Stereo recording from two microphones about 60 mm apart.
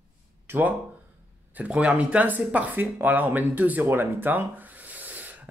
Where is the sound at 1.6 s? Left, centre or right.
Centre.